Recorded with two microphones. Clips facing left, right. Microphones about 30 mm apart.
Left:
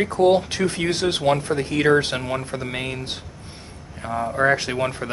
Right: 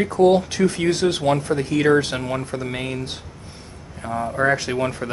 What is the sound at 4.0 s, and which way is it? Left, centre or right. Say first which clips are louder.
Speech: even; centre.